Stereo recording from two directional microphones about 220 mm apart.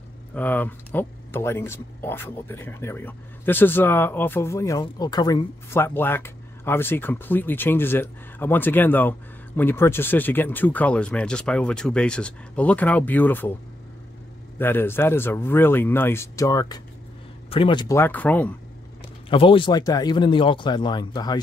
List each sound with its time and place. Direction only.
0.3 s speech: 5° left (ahead or behind)
14.6 s speech: 10° left (ahead or behind)
19.2 s speech: 25° left (ahead or behind)